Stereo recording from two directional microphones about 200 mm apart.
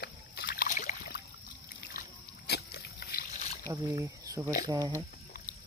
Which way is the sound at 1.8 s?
50° left (ahead or behind).